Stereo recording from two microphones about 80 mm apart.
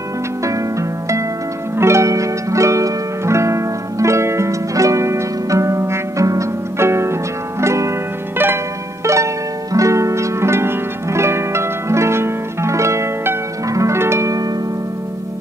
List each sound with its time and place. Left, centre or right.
0.4 s music: right
9.0 s music: right
13.7 s harp: right